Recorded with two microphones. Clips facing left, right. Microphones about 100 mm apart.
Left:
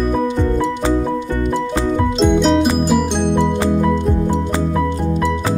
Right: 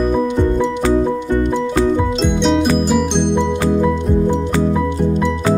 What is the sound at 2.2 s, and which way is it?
Music, 5° left (ahead or behind).